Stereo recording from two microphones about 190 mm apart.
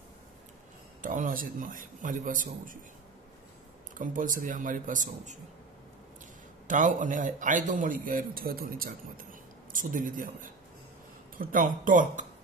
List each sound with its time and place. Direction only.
1.0 s a man's voice: 45° right (ahead or behind)
3.9 s a man's voice: 45° right (ahead or behind)
6.7 s a man's voice: 45° right (ahead or behind)
11.5 s a man's voice: 45° right (ahead or behind)